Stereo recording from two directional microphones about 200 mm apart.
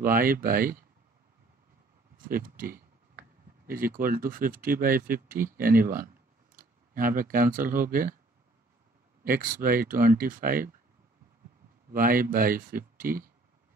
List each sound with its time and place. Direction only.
0.0 s speech: 45° right (ahead or behind)
2.1 s speech: 45° right (ahead or behind)
9.2 s speech: 45° right (ahead or behind)
11.9 s speech: 45° right (ahead or behind)